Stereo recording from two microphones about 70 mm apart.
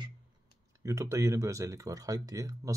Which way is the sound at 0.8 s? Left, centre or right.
Right.